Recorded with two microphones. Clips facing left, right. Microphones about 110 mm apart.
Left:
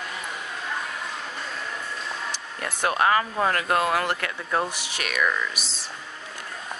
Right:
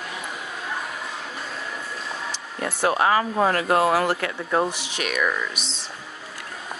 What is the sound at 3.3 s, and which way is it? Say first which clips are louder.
Speech: right 3 dB; 30° right (ahead or behind).